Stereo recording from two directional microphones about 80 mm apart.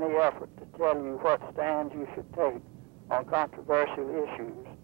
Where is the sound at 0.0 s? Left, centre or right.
Right.